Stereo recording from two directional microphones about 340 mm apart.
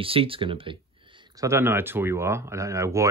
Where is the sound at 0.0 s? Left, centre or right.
Centre.